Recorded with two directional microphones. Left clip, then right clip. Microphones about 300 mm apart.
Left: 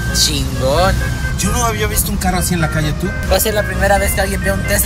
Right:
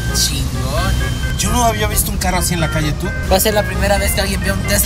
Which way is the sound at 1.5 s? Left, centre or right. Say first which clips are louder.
Right 2 dB; right.